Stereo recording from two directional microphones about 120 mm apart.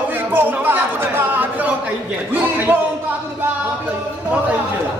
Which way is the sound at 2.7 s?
15° right (ahead or behind).